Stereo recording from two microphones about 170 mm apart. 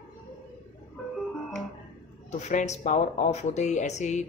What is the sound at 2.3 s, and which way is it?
Speech, 45° left (ahead or behind).